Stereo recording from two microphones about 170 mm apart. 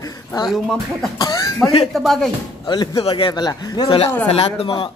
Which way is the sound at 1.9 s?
Centre (ahead or behind).